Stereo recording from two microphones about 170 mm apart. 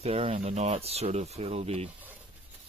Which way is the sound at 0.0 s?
35° right (ahead or behind).